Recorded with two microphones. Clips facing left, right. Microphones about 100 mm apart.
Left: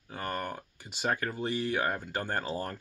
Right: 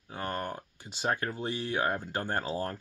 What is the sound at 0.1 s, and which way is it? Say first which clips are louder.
Speech: even; 20° right (ahead or behind).